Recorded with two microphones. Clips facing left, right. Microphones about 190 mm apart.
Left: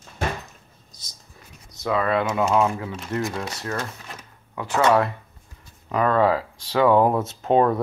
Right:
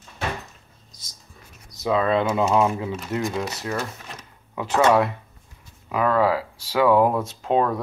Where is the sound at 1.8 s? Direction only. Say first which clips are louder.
Right 2 dB; 20° right (ahead or behind).